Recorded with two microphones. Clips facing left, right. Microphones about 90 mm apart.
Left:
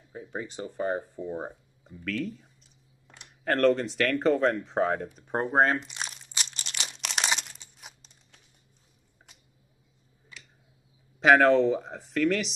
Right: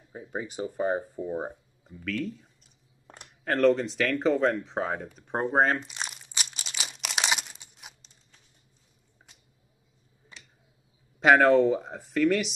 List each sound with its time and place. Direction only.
0.1 s speech: 10° right (ahead or behind)
1.9 s speech: centre (ahead or behind)
5.9 s crumpling: 5° right (ahead or behind)
10.3 s tick: 30° right (ahead or behind)
11.2 s speech: centre (ahead or behind)